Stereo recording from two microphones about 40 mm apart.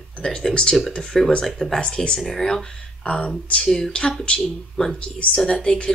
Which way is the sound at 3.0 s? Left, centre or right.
Left.